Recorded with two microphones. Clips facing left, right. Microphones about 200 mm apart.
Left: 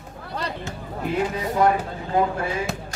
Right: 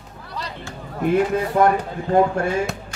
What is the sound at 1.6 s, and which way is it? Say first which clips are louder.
Speech: right 1 dB; 50° right (ahead or behind).